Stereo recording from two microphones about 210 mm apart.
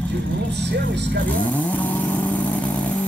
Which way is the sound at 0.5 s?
55° right (ahead or behind).